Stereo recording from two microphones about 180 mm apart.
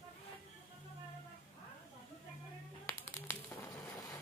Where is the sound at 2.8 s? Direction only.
15° left (ahead or behind).